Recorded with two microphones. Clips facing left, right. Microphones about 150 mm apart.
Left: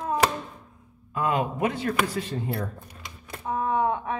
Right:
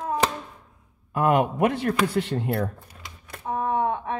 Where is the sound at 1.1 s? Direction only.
60° right (ahead or behind).